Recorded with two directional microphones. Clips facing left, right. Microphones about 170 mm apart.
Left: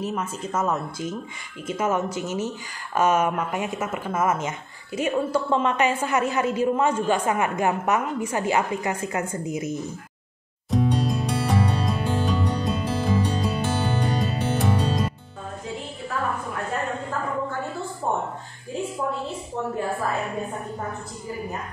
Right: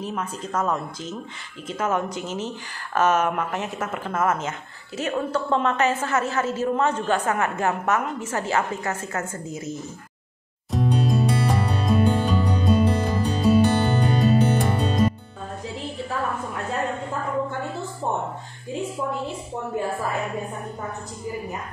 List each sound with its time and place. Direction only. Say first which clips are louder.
0.0 s speech: left 1 dB; 5° left (ahead or behind)
10.7 s music: even; centre (ahead or behind)